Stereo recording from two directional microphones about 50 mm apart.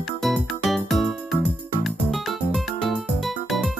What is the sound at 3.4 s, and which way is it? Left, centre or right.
Music, centre.